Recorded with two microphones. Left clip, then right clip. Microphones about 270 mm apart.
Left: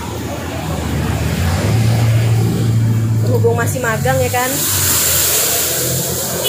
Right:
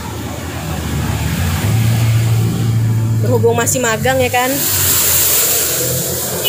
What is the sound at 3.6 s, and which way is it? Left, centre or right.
Speech, right.